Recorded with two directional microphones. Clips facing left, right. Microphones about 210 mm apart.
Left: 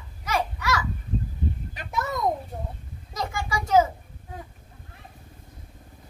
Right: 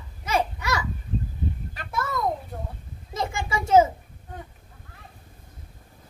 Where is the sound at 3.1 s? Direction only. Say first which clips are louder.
Right 2 dB; 25° right (ahead or behind).